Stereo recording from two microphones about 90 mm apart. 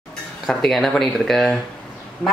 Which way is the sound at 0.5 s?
Centre (ahead or behind).